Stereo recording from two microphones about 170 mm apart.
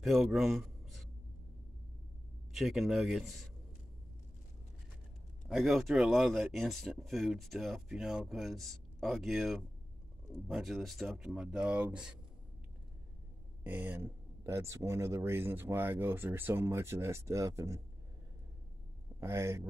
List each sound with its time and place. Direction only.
0.0 s a man's voice: centre (ahead or behind)
2.5 s speech: centre (ahead or behind)
5.5 s speech: centre (ahead or behind)
13.7 s speech: 10° right (ahead or behind)
19.1 s speech: 15° right (ahead or behind)